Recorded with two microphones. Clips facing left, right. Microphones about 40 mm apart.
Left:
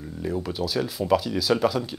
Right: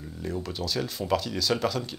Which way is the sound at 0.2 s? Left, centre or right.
Centre.